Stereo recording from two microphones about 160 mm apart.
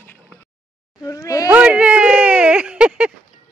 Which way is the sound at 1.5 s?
10° right (ahead or behind).